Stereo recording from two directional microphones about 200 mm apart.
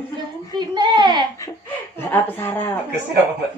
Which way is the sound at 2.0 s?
10° left (ahead or behind).